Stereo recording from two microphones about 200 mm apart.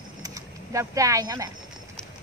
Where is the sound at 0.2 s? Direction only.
15° right (ahead or behind).